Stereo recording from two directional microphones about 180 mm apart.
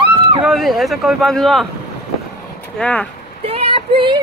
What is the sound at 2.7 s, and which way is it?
Speech, 5° left (ahead or behind).